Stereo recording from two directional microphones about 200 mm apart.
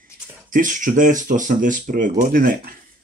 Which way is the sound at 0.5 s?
40° right (ahead or behind).